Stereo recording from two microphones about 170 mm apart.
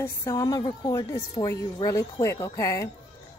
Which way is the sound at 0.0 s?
20° left (ahead or behind).